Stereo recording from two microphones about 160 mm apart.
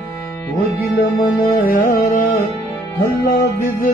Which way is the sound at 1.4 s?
65° left (ahead or behind).